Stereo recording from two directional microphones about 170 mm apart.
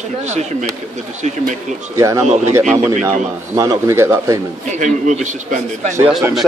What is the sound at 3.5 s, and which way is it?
Speech, 20° right (ahead or behind).